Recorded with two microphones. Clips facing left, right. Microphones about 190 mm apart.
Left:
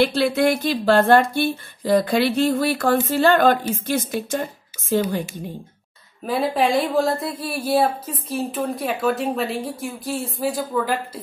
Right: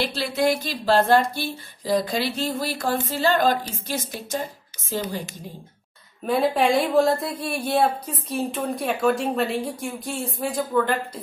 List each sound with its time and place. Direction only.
0.0 s speech: 60° left (ahead or behind)
6.2 s speech: centre (ahead or behind)